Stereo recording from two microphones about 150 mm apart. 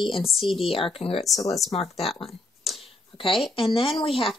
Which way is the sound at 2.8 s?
35° left (ahead or behind).